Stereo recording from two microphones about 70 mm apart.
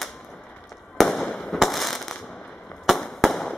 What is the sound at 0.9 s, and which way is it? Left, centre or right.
Fireworks, centre.